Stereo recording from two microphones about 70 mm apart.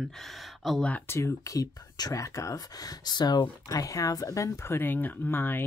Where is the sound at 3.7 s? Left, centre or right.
Left.